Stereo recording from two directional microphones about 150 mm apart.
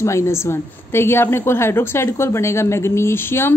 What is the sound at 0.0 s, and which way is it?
A woman's voice, 20° left (ahead or behind).